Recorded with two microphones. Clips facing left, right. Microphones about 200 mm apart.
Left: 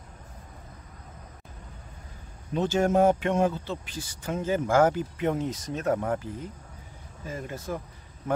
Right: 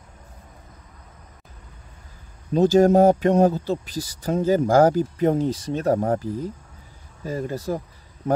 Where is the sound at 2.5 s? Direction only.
35° right (ahead or behind).